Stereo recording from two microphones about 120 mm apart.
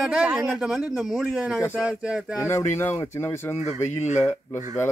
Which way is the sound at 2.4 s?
25° left (ahead or behind).